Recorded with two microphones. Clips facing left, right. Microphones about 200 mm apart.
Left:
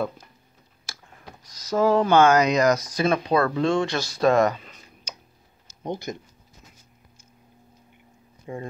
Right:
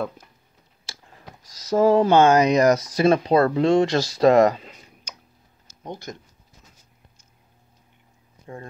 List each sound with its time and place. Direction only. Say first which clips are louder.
1.7 s speech: right 3 dB; 25° right (ahead or behind)
5.9 s speech: left 4 dB; 10° left (ahead or behind)
8.5 s speech: left 4 dB; 10° left (ahead or behind)